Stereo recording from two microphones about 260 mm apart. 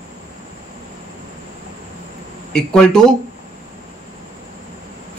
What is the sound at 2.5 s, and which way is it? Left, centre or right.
Speech, centre.